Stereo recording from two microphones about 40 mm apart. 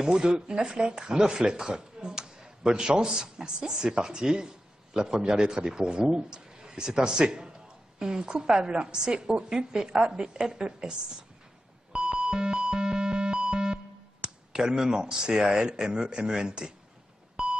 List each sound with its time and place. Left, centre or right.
0.0 s speech: centre
11.9 s music: right
14.2 s speech: centre
17.4 s beep: centre